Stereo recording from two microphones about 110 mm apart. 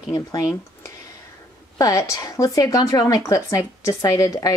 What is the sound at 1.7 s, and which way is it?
A woman's voice, 30° left (ahead or behind).